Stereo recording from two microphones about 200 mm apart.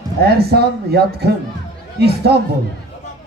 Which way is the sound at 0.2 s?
50° right (ahead or behind).